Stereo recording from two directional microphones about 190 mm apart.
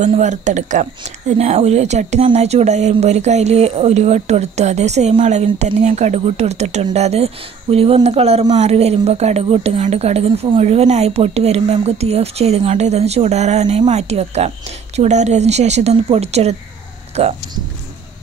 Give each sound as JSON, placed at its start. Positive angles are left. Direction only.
{"t": 0.0, "sound": "speech", "side_deg": -40}